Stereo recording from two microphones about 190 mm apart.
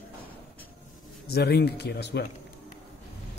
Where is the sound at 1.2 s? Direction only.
55° left (ahead or behind).